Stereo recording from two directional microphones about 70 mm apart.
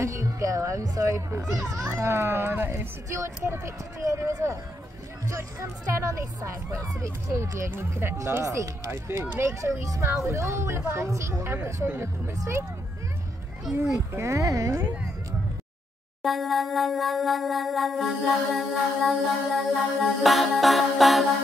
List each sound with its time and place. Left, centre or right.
0.0 s music: right
1.0 s speech: right
4.0 s speech: right
7.7 s speech: right
13.9 s speech: right
16.2 s music: centre